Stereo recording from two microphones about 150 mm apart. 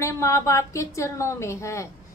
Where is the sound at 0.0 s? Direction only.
20° left (ahead or behind).